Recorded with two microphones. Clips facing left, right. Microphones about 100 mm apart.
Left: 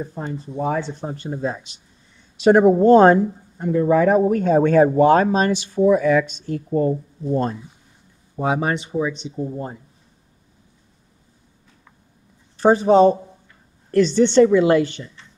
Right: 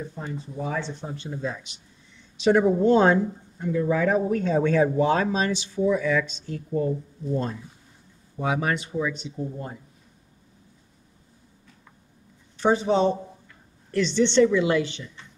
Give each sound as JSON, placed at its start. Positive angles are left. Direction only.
{"t": 0.3, "sound": "speech", "side_deg": 45}
{"t": 2.3, "sound": "speech", "side_deg": 50}
{"t": 8.4, "sound": "speech", "side_deg": 30}
{"t": 12.5, "sound": "speech", "side_deg": 45}